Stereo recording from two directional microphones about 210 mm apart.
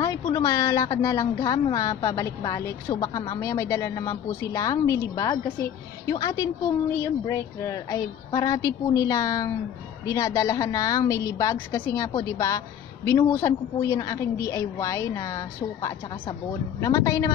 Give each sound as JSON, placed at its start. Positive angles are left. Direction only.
{"t": 0.0, "sound": "a woman's voice", "side_deg": 15}